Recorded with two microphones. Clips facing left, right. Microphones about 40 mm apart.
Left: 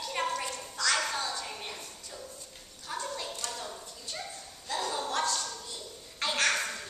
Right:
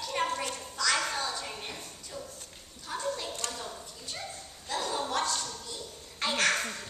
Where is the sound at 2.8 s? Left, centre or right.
Centre.